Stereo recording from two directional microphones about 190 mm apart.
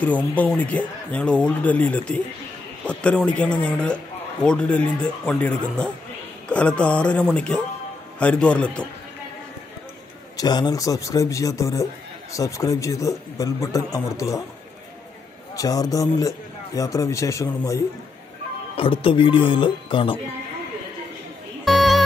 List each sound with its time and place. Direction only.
0.0 s a man's voice: 10° left (ahead or behind)
10.3 s a man's voice: 20° left (ahead or behind)
15.5 s a man's voice: 20° left (ahead or behind)
18.8 s speech: 30° left (ahead or behind)
21.6 s music: centre (ahead or behind)